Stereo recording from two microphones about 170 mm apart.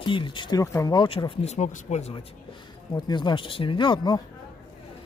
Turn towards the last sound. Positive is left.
turn(degrees=25)  # may be behind; listen again after turning